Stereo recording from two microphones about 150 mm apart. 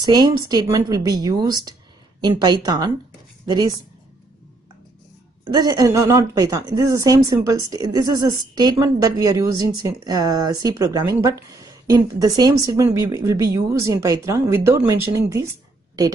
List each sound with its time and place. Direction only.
0.0 s a woman's voice: 30° right (ahead or behind)
5.5 s a woman's voice: 25° right (ahead or behind)